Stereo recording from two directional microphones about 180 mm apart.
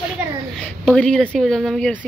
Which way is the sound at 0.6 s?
5° left (ahead or behind).